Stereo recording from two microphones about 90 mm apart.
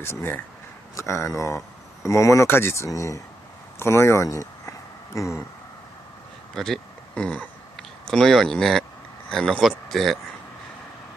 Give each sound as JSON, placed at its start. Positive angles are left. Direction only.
{"t": 0.0, "sound": "speech", "side_deg": 30}
{"t": 6.5, "sound": "speech", "side_deg": 5}